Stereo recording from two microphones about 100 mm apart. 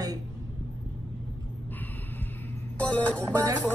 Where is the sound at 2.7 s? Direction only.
15° left (ahead or behind).